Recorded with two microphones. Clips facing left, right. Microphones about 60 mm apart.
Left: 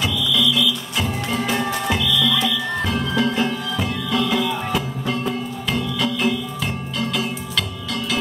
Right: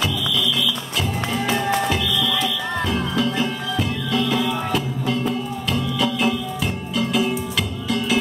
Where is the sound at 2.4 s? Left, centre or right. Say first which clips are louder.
Left 1 dB; left.